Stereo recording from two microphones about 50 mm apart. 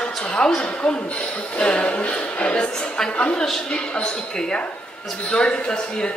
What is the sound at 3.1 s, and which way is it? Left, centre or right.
Speech, left.